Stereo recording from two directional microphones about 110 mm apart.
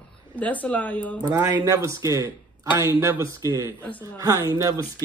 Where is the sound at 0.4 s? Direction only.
15° left (ahead or behind).